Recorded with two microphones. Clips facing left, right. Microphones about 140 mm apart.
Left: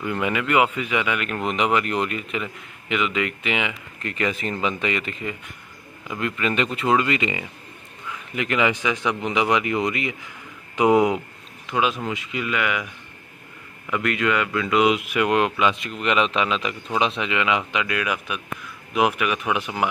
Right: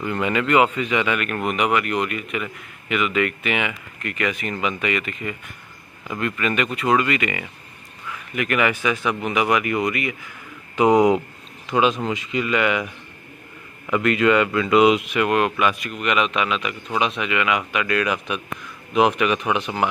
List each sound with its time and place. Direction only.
0.0 s a man's voice: 5° left (ahead or behind)
4.0 s speech: 30° left (ahead or behind)
6.0 s a man's voice: 15° left (ahead or behind)
10.8 s speech: 5° left (ahead or behind)
15.2 s a man's voice: 20° left (ahead or behind)
17.8 s speech: 10° left (ahead or behind)